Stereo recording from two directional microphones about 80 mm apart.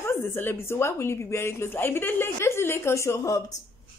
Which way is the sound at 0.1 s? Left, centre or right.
Left.